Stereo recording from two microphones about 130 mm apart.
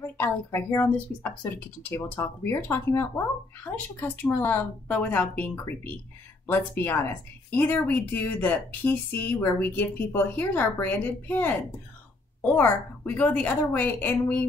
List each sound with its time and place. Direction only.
0.0 s a woman's voice: 15° left (ahead or behind)